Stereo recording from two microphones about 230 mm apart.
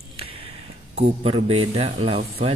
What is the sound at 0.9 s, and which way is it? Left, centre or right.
Speech, right.